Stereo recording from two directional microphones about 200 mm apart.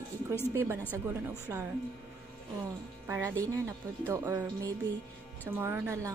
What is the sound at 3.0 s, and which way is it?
A woman's voice, 15° right (ahead or behind).